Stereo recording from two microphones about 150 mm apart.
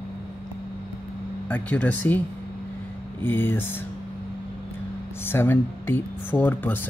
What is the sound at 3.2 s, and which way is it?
Speech, 15° left (ahead or behind).